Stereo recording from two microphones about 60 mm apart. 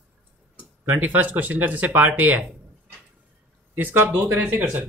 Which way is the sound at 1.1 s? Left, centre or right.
Right.